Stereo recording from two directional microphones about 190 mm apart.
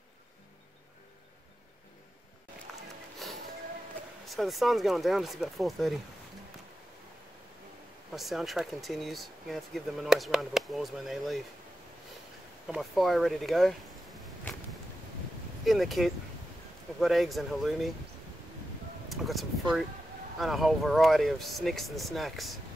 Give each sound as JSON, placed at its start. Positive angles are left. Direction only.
{"t": 3.2, "sound": "music", "side_deg": 0}
{"t": 4.3, "sound": "speech", "side_deg": 0}
{"t": 8.1, "sound": "speech", "side_deg": 0}
{"t": 12.6, "sound": "speech", "side_deg": 0}
{"t": 15.6, "sound": "speech", "side_deg": 0}
{"t": 19.0, "sound": "a sound", "side_deg": 0}
{"t": 20.3, "sound": "speech", "side_deg": 0}